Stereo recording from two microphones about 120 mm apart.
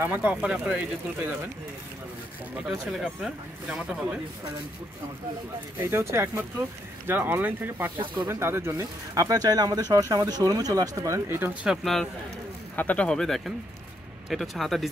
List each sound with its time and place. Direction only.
0.0 s speech: 10° right (ahead or behind)
2.5 s speech: 5° right (ahead or behind)
5.9 s speech: 20° right (ahead or behind)
11.6 s speech: centre (ahead or behind)